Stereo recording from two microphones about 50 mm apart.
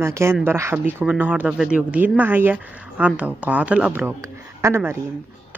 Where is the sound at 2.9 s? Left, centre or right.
Right.